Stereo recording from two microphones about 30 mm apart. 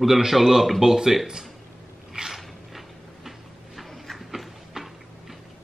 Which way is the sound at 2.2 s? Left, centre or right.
Right.